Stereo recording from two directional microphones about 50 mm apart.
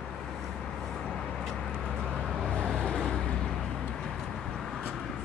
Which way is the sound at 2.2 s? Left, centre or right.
Centre.